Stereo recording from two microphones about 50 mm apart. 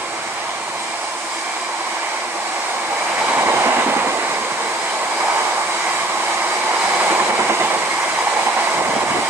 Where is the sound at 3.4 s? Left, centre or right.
Right.